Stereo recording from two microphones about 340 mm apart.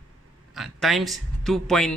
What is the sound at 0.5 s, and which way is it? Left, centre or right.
A man's voice, centre.